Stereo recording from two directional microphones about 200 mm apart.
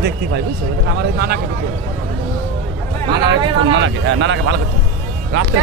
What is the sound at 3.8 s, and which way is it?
Speech, 65° right (ahead or behind).